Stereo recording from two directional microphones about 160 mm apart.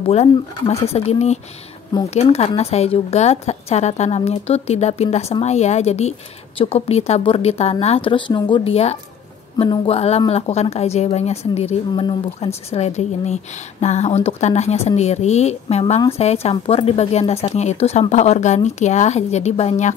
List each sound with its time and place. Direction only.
0.0 s a woman's voice: 40° left (ahead or behind)
11.9 s speech: 30° left (ahead or behind)
12.4 s a woman's voice: 40° left (ahead or behind)